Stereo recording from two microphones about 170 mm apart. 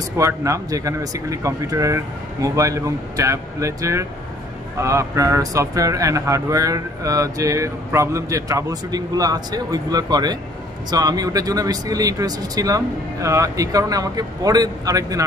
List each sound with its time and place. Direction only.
0.2 s speech: 20° right (ahead or behind)